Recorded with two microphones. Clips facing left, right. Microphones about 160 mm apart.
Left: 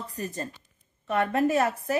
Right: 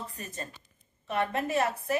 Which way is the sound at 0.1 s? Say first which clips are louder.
Left 7 dB; 40° left (ahead or behind).